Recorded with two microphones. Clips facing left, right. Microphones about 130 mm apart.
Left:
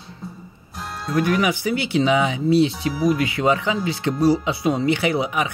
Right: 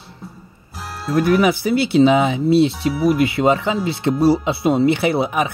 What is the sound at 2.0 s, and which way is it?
Speech, 30° right (ahead or behind).